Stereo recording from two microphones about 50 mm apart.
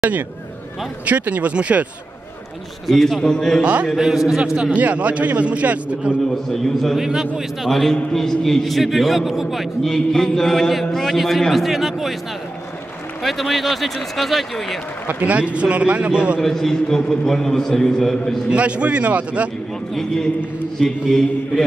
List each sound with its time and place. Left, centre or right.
1.0 s a man's voice: right
2.9 s a man's voice: centre
3.8 s a man's voice: centre
4.6 s a man's voice: right
6.5 s a man's voice: centre
7.0 s a man's voice: centre
7.9 s a man's voice: centre
9.8 s a man's voice: centre
13.2 s a man's voice: centre
15.1 s a man's voice: right
16.3 s a man's voice: centre
18.5 s a man's voice: right
19.9 s a man's voice: centre